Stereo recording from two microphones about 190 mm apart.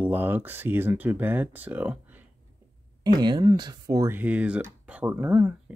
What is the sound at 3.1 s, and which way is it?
Speech, 20° right (ahead or behind).